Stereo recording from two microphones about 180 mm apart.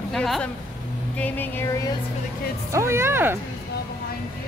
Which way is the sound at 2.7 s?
15° right (ahead or behind).